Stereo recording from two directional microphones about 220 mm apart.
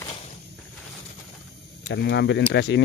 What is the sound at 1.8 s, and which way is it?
Speech, 50° left (ahead or behind).